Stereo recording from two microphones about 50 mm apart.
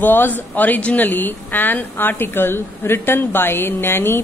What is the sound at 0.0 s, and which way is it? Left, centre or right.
A woman's voice, left.